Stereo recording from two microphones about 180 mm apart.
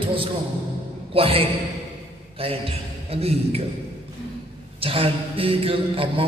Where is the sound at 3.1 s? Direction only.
35° right (ahead or behind).